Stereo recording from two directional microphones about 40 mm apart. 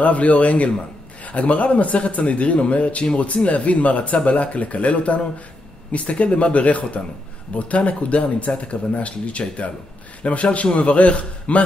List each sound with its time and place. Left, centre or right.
0.0 s speech: left